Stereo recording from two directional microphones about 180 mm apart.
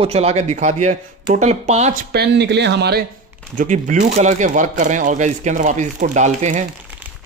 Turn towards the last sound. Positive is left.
turn(degrees=-40)  # may be behind; listen again after turning